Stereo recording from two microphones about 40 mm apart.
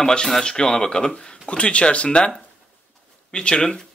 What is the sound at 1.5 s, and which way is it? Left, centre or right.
Speech, left.